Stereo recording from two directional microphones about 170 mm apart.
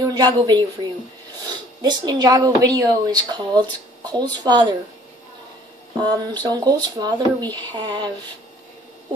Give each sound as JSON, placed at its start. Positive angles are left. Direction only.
{"t": 0.0, "sound": "speech", "side_deg": -25}
{"t": 6.0, "sound": "speech", "side_deg": -25}